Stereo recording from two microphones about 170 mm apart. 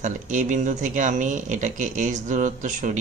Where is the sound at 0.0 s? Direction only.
45° right (ahead or behind).